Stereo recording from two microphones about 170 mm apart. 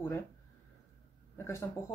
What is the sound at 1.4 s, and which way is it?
Speech, 15° left (ahead or behind).